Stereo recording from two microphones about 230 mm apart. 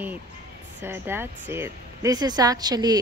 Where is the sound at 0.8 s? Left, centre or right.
Centre.